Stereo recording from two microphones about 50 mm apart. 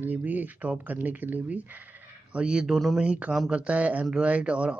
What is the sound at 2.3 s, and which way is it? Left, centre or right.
Speech, centre.